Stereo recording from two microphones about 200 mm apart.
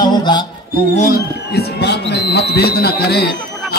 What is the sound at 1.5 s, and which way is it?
A man's voice, 55° left (ahead or behind).